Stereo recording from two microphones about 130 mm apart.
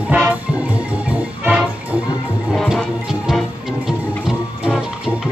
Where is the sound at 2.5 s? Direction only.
Centre (ahead or behind).